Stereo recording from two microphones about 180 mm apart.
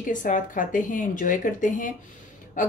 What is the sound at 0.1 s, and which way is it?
A woman's voice, 45° left (ahead or behind).